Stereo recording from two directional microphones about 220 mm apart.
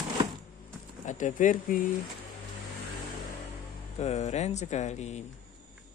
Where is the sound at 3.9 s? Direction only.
30° left (ahead or behind).